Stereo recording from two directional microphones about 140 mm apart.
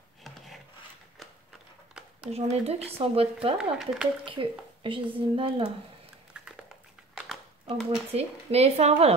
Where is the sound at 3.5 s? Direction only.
5° right (ahead or behind).